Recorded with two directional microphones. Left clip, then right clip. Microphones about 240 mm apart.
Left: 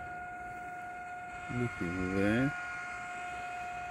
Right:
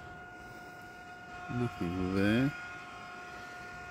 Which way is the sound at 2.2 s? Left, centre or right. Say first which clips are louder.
Even; centre.